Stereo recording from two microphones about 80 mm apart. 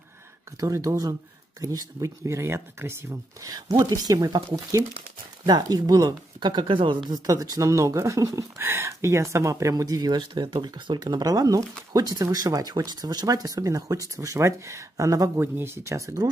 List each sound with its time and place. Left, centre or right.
0.6 s speech: right
3.4 s speech: right
5.5 s speech: right
7.2 s speech: right